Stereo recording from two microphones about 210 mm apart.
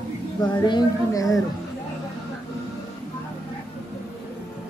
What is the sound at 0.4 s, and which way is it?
Speech, 20° left (ahead or behind).